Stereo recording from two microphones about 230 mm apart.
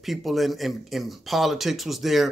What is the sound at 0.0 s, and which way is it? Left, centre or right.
Speech, centre.